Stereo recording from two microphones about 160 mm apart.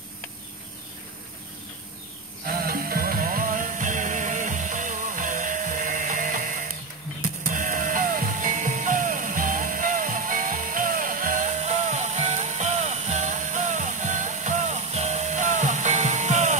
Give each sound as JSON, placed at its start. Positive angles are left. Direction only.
{"t": 2.4, "sound": "music", "side_deg": -70}